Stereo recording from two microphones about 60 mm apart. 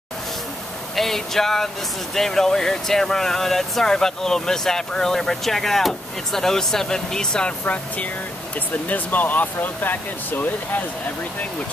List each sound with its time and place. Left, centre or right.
0.9 s speech: centre; by 10.8 s left